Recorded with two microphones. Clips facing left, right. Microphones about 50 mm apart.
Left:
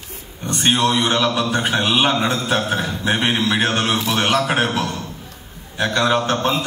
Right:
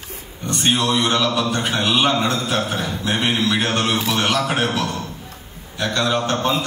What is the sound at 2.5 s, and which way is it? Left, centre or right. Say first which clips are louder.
A man's voice: left 2 dB; left.